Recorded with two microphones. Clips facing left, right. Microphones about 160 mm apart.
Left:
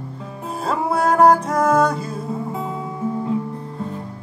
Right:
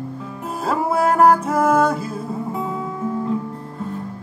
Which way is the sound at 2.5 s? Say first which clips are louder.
Right 1 dB; 25° left (ahead or behind).